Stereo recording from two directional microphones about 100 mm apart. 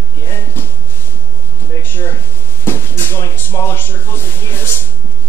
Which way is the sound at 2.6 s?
20° left (ahead or behind).